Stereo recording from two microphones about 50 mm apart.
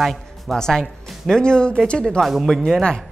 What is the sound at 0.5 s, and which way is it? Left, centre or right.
Speech, centre.